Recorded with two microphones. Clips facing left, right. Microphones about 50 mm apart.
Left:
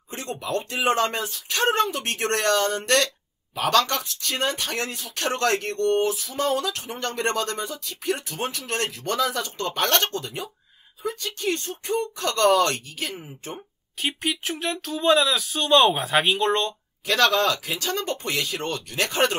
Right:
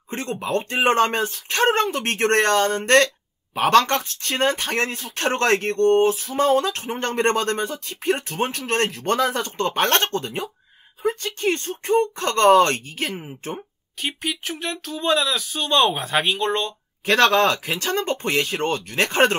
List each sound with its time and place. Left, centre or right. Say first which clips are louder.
0.1 s speech: right 4 dB; right
14.0 s speech: even; centre
17.0 s speech: right 4 dB; right